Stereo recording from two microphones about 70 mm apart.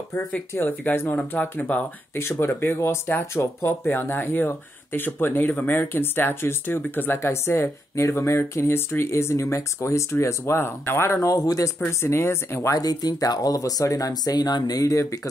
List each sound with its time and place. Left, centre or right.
0.6 s speech: left
2.4 s speech: left
11.2 s speech: left
11.8 s speech: left
12.7 s speech: left